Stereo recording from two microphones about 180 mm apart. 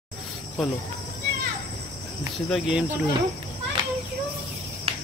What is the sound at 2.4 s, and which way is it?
Speech, centre (ahead or behind).